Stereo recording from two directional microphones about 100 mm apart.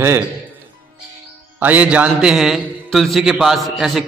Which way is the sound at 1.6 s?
15° right (ahead or behind).